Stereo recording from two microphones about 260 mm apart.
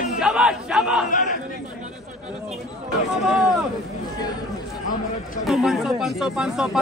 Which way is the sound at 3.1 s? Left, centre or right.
Centre.